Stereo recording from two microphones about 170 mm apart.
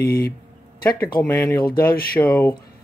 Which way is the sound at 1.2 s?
15° left (ahead or behind).